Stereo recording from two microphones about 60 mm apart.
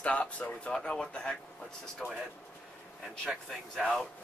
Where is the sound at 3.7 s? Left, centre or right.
Centre.